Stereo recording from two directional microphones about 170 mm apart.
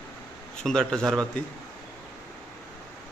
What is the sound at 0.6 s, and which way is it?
Speech, 5° left (ahead or behind).